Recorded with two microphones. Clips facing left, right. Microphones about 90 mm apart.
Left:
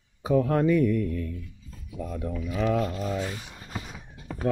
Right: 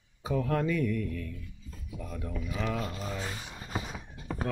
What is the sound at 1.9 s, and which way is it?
Mantra, 25° left (ahead or behind).